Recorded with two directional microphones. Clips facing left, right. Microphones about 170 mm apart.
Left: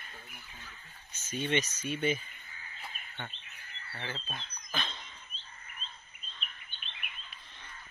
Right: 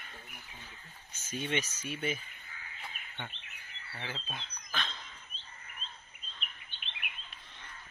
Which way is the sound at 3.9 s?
5° right (ahead or behind).